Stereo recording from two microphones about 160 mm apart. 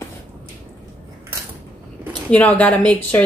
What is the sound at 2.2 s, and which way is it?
Speech, 10° left (ahead or behind).